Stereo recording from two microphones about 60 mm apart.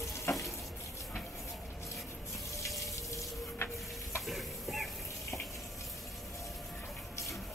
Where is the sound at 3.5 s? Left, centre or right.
Left.